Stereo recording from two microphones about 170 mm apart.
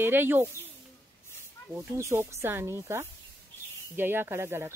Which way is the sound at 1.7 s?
10° right (ahead or behind).